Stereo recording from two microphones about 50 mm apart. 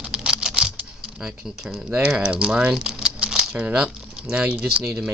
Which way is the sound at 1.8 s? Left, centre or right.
Right.